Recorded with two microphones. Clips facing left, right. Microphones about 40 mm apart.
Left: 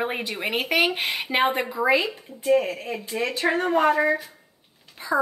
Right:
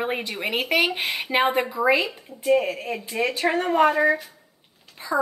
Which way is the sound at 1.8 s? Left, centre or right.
Left.